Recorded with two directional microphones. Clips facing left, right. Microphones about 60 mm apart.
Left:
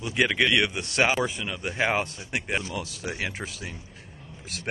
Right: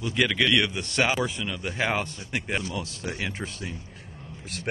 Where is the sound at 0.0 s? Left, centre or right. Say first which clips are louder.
Left 1 dB; centre.